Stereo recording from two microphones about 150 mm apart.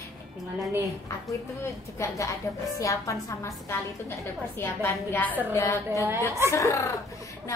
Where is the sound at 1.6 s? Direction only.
20° left (ahead or behind).